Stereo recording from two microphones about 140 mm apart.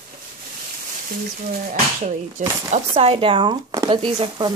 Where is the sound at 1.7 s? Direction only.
60° right (ahead or behind).